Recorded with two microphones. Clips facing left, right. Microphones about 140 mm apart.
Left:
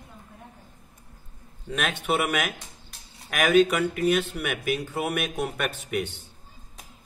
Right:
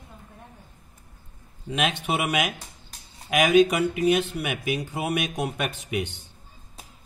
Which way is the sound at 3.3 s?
10° right (ahead or behind).